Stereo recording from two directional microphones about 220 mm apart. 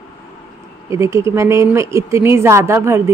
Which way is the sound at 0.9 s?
15° right (ahead or behind).